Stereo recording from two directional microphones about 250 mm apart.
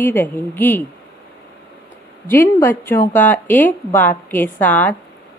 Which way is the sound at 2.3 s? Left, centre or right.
Centre.